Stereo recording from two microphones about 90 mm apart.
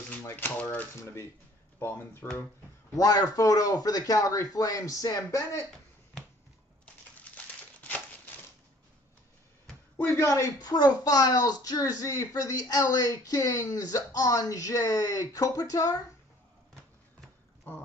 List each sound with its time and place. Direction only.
0.2 s speech: 20° left (ahead or behind)
3.0 s speech: 45° left (ahead or behind)
7.8 s crumpling: 20° left (ahead or behind)
9.9 s speech: 30° left (ahead or behind)
10.6 s speech: 45° left (ahead or behind)
17.7 s speech: 20° left (ahead or behind)